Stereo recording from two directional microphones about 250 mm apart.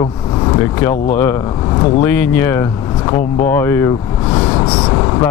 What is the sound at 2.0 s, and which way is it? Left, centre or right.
Speech, centre.